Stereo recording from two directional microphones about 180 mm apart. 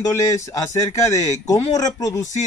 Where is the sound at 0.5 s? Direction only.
15° left (ahead or behind).